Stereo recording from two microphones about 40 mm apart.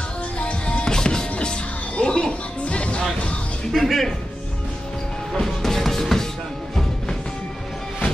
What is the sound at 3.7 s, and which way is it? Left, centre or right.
Music, centre.